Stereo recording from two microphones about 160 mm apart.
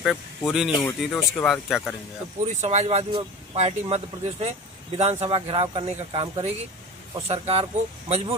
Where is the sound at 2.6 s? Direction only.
45° right (ahead or behind).